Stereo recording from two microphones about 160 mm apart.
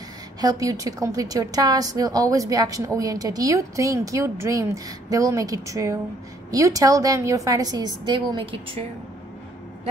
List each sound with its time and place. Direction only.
0.4 s a woman's voice: 20° right (ahead or behind)